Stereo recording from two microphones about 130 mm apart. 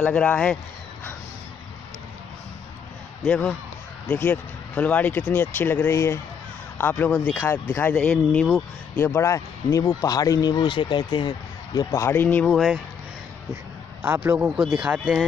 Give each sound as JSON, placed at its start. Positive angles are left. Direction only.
{"t": 0.0, "sound": "speech", "side_deg": 10}
{"t": 3.2, "sound": "a man's voice", "side_deg": 5}
{"t": 8.9, "sound": "speech", "side_deg": 15}
{"t": 12.4, "sound": "speech", "side_deg": 0}
{"t": 14.0, "sound": "a man's voice", "side_deg": -15}
{"t": 14.8, "sound": "speech", "side_deg": -5}